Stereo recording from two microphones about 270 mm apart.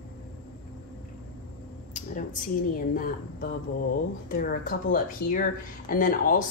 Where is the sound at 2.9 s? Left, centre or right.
Left.